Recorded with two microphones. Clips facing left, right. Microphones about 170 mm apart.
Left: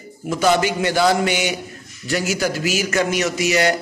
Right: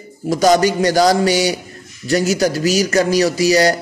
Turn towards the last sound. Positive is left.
turn(degrees=-35)  # may be behind; listen again after turning